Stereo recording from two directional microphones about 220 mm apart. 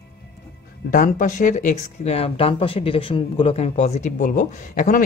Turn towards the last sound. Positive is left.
turn(degrees=35)  # may be behind; listen again after turning